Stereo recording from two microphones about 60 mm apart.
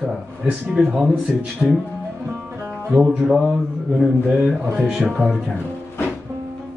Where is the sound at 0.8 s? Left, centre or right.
Centre.